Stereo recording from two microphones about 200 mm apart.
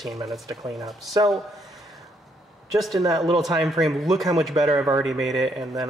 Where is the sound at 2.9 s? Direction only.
15° right (ahead or behind).